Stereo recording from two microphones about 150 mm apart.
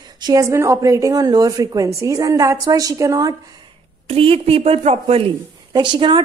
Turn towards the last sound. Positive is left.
turn(degrees=-30)  # may be behind; listen again after turning